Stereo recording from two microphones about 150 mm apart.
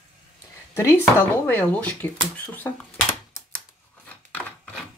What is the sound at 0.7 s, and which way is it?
Speech, 15° left (ahead or behind).